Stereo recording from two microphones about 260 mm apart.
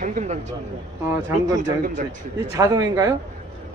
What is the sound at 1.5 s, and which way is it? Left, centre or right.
Speech, right.